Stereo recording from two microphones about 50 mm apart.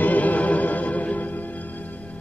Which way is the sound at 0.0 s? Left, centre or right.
Left.